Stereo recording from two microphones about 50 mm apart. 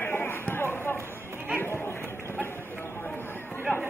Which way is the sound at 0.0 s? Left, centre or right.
Left.